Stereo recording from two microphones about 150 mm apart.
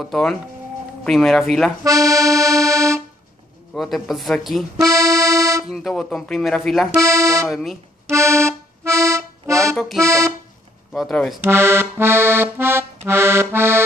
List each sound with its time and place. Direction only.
0.0 s speech: centre (ahead or behind)
1.9 s accordion: 20° right (ahead or behind)
3.7 s speech: centre (ahead or behind)
4.8 s music: 20° right (ahead or behind)
5.7 s speech: centre (ahead or behind)
7.0 s speech: 20° right (ahead or behind)
7.4 s speech: centre (ahead or behind)
8.1 s accordion: 20° right (ahead or behind)
9.8 s accordion: centre (ahead or behind)
10.0 s speech: 20° right (ahead or behind)
10.9 s speech: centre (ahead or behind)
11.4 s accordion: 15° right (ahead or behind)